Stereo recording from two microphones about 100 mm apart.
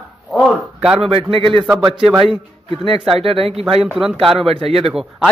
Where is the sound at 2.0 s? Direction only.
5° right (ahead or behind).